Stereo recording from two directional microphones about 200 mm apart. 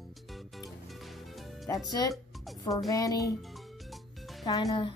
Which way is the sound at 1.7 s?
20° left (ahead or behind).